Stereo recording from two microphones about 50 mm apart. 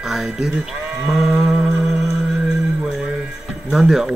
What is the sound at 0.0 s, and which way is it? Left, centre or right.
Speech, centre.